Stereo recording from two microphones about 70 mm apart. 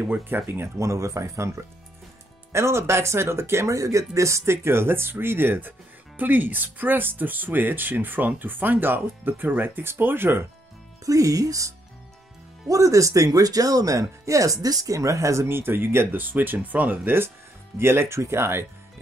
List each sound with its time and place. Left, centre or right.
0.0 s speech: right
3.7 s speech: right
11.1 s speech: right